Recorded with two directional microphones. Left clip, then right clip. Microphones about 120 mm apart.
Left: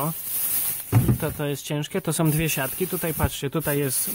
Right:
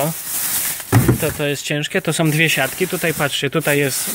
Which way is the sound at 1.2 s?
35° left (ahead or behind).